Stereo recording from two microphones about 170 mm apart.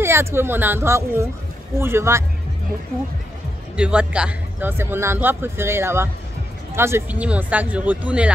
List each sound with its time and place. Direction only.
0.0 s speech: 15° right (ahead or behind)
3.7 s speech: 5° right (ahead or behind)